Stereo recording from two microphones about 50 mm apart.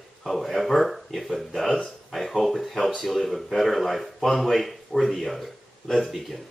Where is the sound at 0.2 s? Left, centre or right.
Centre.